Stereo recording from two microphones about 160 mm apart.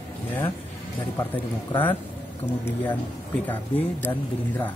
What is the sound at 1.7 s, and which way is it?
Speech, 30° left (ahead or behind).